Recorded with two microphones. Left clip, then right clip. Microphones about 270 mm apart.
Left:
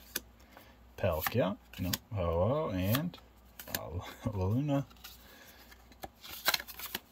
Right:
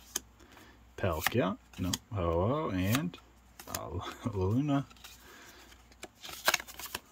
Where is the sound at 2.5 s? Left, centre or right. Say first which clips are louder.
Even; centre.